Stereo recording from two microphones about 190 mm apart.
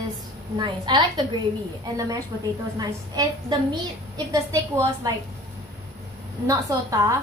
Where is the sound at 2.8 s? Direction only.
20° right (ahead or behind).